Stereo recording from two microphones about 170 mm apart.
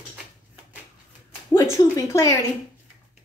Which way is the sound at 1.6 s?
20° left (ahead or behind).